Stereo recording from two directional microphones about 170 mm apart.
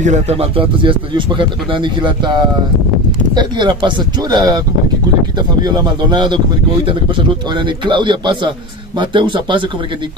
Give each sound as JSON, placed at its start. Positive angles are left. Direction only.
{"t": 0.0, "sound": "a man's voice", "side_deg": -40}
{"t": 5.6, "sound": "a man's voice", "side_deg": -25}